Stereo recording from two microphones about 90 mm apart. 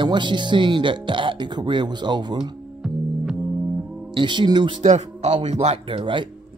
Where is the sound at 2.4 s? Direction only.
10° right (ahead or behind).